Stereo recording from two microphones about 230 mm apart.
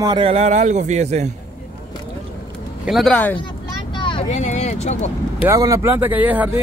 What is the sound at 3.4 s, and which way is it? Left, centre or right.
Vehicle, left.